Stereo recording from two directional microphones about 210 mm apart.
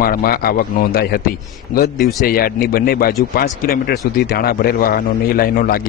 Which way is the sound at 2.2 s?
45° left (ahead or behind).